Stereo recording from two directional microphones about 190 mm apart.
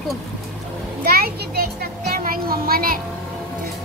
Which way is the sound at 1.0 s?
55° right (ahead or behind).